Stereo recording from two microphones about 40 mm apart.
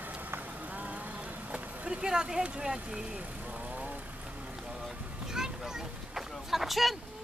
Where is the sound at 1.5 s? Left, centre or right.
Right.